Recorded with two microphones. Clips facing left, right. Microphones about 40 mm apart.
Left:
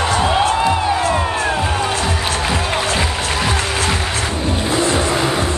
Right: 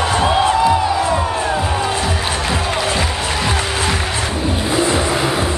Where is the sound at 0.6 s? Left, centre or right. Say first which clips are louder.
Right 2 dB; left.